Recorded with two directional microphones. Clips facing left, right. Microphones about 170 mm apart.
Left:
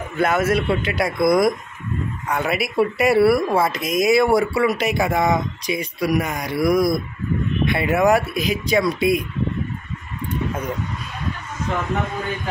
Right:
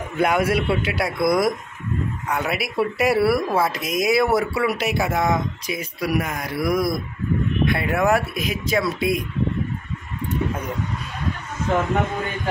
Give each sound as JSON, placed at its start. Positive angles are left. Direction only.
{"t": 0.2, "sound": "a man's voice", "side_deg": -15}